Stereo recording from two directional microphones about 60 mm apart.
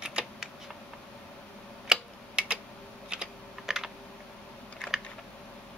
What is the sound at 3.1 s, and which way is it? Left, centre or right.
Typing, centre.